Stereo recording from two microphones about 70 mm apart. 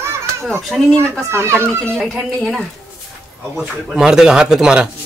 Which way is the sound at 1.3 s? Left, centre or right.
Right.